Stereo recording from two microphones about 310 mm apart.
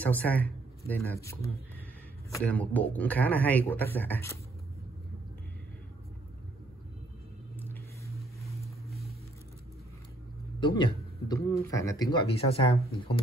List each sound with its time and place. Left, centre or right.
0.0 s speech: centre
2.3 s a man's voice: centre
7.5 s a sound: centre
10.6 s speech: centre